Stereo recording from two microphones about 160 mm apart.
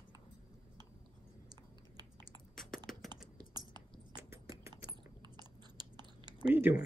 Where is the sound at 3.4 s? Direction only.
25° right (ahead or behind).